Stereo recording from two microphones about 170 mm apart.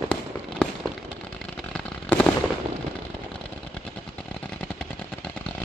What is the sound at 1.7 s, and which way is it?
Fireworks, 5° left (ahead or behind).